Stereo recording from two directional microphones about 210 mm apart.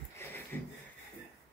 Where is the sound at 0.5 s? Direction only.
10° left (ahead or behind).